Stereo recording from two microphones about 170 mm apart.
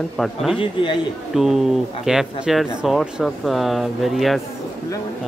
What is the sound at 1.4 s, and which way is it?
Speech, centre (ahead or behind).